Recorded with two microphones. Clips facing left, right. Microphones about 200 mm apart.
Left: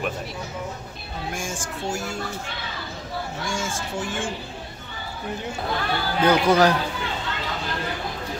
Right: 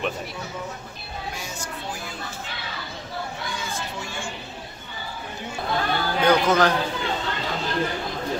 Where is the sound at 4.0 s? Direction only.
50° left (ahead or behind).